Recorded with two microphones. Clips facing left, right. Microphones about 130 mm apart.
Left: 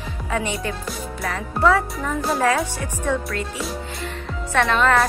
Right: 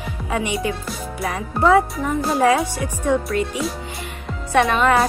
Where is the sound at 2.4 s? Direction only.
15° right (ahead or behind).